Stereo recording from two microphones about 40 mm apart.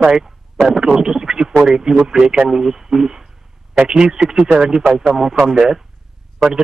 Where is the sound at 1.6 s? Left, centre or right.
Centre.